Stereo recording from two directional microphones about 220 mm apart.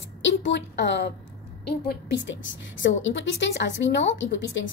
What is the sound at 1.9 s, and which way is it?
A woman's voice, 55° left (ahead or behind).